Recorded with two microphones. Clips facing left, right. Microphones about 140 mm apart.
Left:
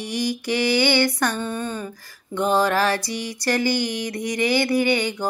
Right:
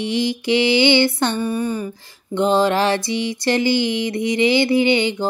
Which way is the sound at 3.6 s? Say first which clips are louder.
Right 4 dB; 45° left (ahead or behind).